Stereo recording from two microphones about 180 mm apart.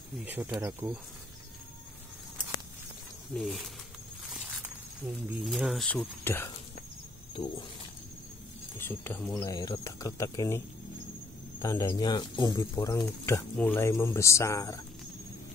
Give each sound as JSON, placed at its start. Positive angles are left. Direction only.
{"t": 0.2, "sound": "speech", "side_deg": -10}
{"t": 3.3, "sound": "speech", "side_deg": 0}
{"t": 5.4, "sound": "speech", "side_deg": 0}
{"t": 7.3, "sound": "speech", "side_deg": 30}
{"t": 8.7, "sound": "speech", "side_deg": 10}
{"t": 9.4, "sound": "speech", "side_deg": 20}
{"t": 11.6, "sound": "speech", "side_deg": 20}